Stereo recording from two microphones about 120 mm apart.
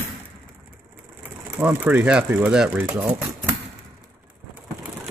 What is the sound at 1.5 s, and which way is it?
Speech, 15° right (ahead or behind).